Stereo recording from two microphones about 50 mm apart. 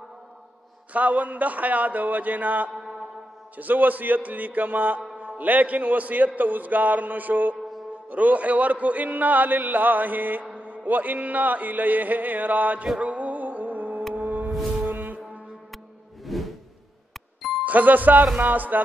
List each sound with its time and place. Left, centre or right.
0.9 s a man's voice: right
13.0 s music: right
14.1 s a sound: right
14.9 s music: right
16.3 s whoosh: centre
17.1 s music: centre
17.6 s a man's voice: right